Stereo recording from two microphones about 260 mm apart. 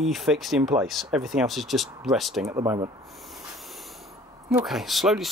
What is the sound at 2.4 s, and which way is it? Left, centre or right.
Speech, centre.